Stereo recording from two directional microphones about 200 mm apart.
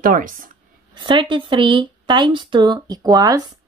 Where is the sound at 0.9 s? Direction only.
25° right (ahead or behind).